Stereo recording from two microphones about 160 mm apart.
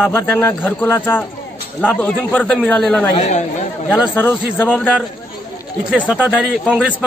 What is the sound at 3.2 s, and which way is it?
Speech, 45° left (ahead or behind).